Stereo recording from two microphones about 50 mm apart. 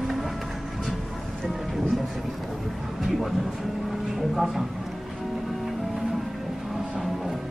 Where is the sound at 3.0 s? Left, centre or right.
Centre.